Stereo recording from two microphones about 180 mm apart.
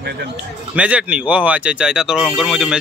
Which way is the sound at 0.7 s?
5° right (ahead or behind).